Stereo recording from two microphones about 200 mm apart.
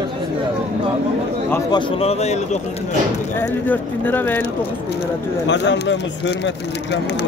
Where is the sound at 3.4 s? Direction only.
10° left (ahead or behind).